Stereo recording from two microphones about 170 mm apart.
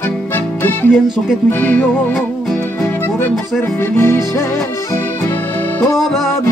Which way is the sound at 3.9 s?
15° left (ahead or behind).